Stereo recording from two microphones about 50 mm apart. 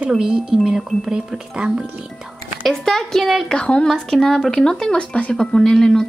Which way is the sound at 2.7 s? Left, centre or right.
Centre.